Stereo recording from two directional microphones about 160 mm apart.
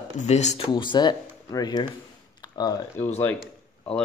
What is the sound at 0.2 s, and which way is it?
Speech, 45° left (ahead or behind).